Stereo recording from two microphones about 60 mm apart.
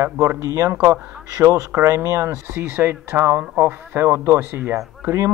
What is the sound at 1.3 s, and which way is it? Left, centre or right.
Speech, right.